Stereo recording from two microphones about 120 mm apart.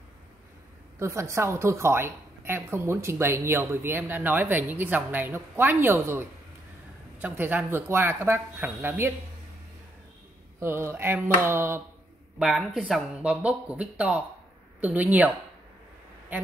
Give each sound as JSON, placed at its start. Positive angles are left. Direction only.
{"t": 0.9, "sound": "a woman's voice", "side_deg": -25}
{"t": 10.6, "sound": "a woman's voice", "side_deg": -20}
{"t": 12.4, "sound": "speech", "side_deg": -5}